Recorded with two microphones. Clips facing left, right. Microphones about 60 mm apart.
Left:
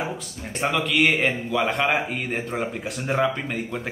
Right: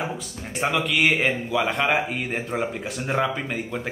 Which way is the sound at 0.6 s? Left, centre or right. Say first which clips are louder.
Left 1 dB; centre.